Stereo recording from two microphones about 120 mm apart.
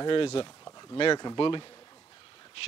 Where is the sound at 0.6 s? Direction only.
30° left (ahead or behind).